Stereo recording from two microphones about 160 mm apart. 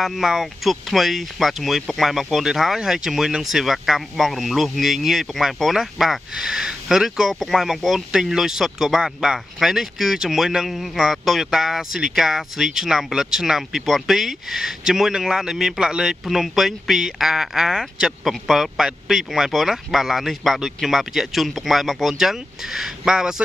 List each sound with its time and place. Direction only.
0.0 s speech: centre (ahead or behind)